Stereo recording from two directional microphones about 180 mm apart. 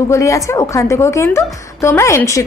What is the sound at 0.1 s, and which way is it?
A woman's voice, 15° left (ahead or behind).